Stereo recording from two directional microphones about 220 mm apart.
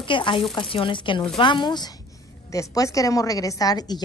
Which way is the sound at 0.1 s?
20° left (ahead or behind).